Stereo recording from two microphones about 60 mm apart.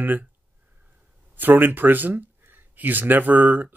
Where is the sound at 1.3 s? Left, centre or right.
Right.